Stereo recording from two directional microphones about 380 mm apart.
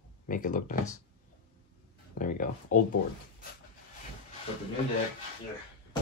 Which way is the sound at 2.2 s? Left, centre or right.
Left.